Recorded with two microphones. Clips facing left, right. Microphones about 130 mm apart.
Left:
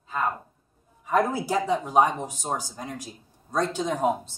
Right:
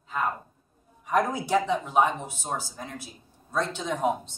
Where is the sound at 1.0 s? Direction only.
30° left (ahead or behind).